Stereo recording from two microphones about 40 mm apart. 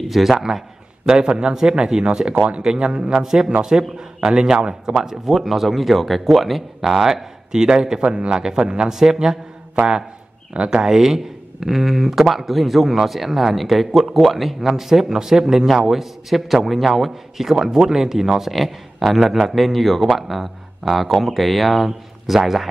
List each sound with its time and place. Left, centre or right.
0.1 s a man's voice: centre
8.0 s a man's voice: right
8.3 s speech: centre
10.5 s speech: right
10.8 s speech: centre